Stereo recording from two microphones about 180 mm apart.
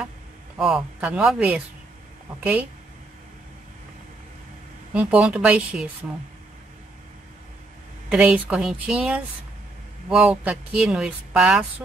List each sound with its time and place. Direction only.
0.6 s speech: 5° right (ahead or behind)
4.9 s speech: 5° right (ahead or behind)
8.1 s speech: 5° right (ahead or behind)